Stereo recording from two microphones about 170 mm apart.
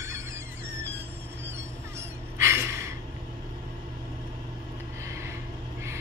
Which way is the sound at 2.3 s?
15° right (ahead or behind).